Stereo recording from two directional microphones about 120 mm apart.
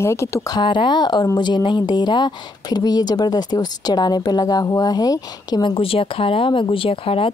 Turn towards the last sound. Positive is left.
turn(degrees=50)  # may be behind; listen again after turning